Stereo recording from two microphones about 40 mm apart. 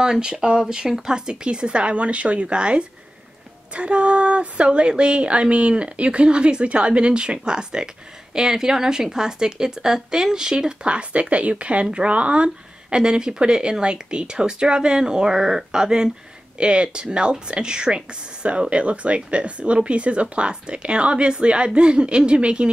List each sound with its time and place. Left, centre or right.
0.0 s speech: right
12.9 s speech: right